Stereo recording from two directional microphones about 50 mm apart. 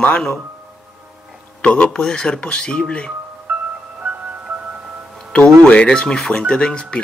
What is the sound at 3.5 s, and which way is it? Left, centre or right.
Music, right.